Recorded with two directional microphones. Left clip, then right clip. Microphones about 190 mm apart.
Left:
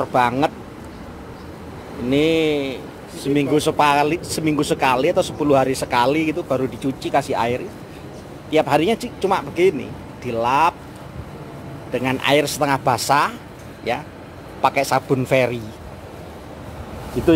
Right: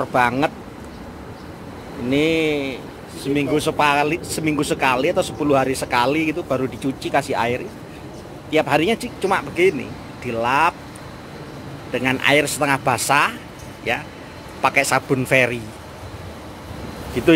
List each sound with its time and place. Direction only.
0.0 s speech: 10° left (ahead or behind)
2.0 s speech: 15° left (ahead or behind)
11.9 s speech: 10° left (ahead or behind)
14.6 s speech: 10° left (ahead or behind)